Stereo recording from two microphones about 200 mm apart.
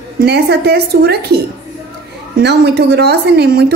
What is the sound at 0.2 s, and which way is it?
A woman's voice, 55° right (ahead or behind).